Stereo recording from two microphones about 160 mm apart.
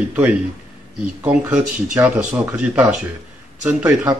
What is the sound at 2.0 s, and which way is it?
Speech, 5° right (ahead or behind).